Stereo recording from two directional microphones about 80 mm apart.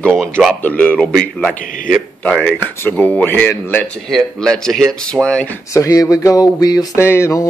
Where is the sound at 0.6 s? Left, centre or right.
Left.